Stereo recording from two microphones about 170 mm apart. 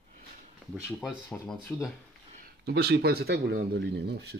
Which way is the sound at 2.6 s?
75° right (ahead or behind).